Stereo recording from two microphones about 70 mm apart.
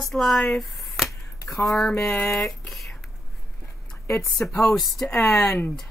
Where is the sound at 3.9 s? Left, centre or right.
Left.